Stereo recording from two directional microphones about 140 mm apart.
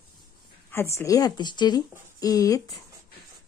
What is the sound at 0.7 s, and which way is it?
Speech, 20° left (ahead or behind).